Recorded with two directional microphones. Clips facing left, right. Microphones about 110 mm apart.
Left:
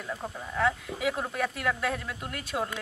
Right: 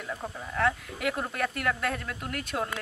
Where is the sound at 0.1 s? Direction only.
Centre (ahead or behind).